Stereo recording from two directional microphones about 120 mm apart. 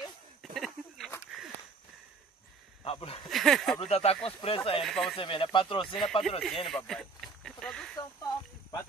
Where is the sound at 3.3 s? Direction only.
Centre (ahead or behind).